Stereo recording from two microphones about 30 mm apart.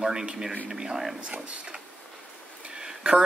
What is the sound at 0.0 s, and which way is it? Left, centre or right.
A man's voice, right.